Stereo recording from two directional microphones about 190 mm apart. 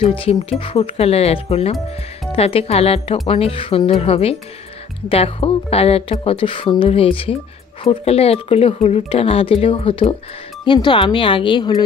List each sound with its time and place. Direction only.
0.0 s speech: 30° left (ahead or behind)